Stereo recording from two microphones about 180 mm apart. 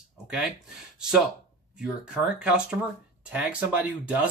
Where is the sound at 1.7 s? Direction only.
5° right (ahead or behind).